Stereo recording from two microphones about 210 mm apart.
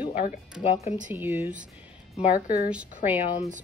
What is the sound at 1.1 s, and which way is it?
Speech, 10° right (ahead or behind).